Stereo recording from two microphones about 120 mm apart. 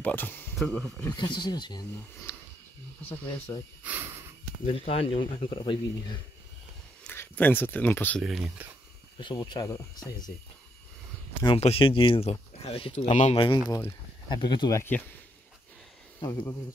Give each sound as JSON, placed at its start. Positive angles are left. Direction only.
{"t": 0.0, "sound": "speech", "side_deg": 15}
{"t": 0.6, "sound": "speech", "side_deg": 5}
{"t": 1.1, "sound": "speech", "side_deg": 40}
{"t": 3.5, "sound": "speech", "side_deg": 25}
{"t": 3.8, "sound": "wheeze", "side_deg": -15}
{"t": 4.6, "sound": "speech", "side_deg": 55}
{"t": 7.1, "sound": "speech", "side_deg": 15}
{"t": 8.2, "sound": "speech", "side_deg": -5}
{"t": 9.2, "sound": "speech", "side_deg": 40}
{"t": 11.6, "sound": "speech", "side_deg": 50}
{"t": 13.1, "sound": "speech", "side_deg": 80}
{"t": 13.4, "sound": "speech", "side_deg": 40}
{"t": 14.8, "sound": "speech", "side_deg": 15}
{"t": 16.2, "sound": "speech", "side_deg": 40}